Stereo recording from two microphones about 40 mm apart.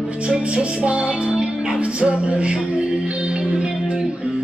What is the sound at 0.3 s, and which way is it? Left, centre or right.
Music, right.